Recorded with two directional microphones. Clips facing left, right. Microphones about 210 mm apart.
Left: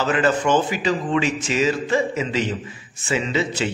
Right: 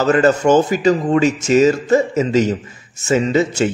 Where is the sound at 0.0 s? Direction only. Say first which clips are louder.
Right 6 dB; 40° right (ahead or behind).